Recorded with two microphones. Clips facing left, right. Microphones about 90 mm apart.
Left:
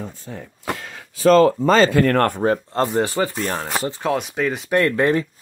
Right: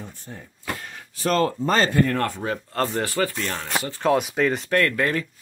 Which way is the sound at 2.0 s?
65° left (ahead or behind).